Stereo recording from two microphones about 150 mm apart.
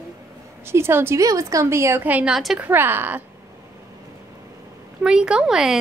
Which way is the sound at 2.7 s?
15° right (ahead or behind).